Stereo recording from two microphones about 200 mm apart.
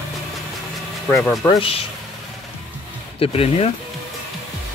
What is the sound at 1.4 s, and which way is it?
Speech, 25° left (ahead or behind).